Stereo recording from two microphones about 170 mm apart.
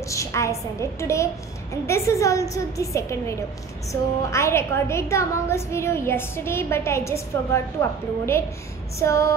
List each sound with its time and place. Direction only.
0.1 s a woman's voice: 15° left (ahead or behind)
9.0 s a woman's voice: 15° left (ahead or behind)